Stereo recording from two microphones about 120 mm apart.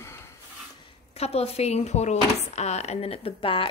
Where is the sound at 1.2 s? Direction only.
60° left (ahead or behind).